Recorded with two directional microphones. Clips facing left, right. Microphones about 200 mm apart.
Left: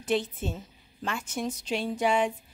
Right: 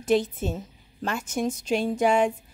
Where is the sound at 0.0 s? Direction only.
40° right (ahead or behind).